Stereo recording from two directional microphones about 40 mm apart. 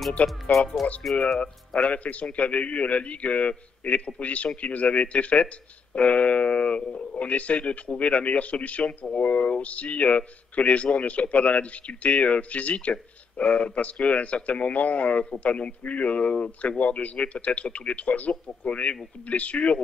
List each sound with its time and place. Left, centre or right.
0.2 s speech: left
0.8 s speech: centre
1.4 s speech: left